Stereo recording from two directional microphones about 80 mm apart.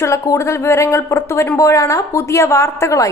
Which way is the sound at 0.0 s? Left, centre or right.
Left.